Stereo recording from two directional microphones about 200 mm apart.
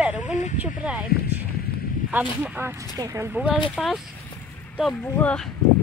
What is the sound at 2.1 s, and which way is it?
Speech, 10° right (ahead or behind).